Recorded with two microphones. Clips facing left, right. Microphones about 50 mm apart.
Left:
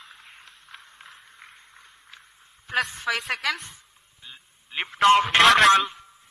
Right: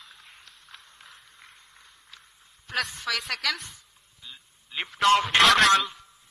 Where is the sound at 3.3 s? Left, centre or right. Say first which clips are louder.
Left 3 dB; centre.